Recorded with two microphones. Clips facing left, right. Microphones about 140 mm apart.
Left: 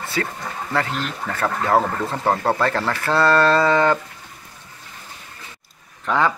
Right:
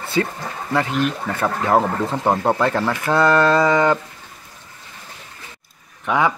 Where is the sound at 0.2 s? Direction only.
20° right (ahead or behind).